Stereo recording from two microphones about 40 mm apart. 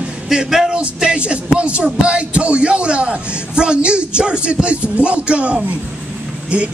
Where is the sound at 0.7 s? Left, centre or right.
Right.